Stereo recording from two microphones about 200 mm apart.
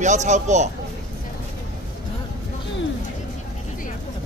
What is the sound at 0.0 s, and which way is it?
Speech, 35° right (ahead or behind).